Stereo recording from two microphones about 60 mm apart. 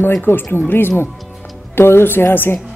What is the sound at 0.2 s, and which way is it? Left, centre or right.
A woman's voice, left.